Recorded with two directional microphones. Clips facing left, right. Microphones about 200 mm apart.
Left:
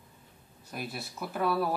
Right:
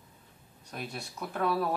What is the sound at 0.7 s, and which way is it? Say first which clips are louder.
Speech: left 1 dB; 5° left (ahead or behind).